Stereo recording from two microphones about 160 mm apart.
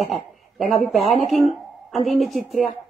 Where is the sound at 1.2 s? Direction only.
Centre (ahead or behind).